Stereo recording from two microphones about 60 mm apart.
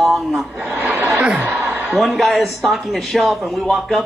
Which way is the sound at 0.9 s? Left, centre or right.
Centre.